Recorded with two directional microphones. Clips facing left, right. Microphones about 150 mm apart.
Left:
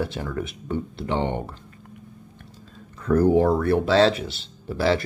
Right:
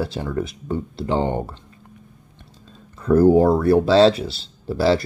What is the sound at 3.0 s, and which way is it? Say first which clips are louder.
Speech: right 4 dB; 35° right (ahead or behind).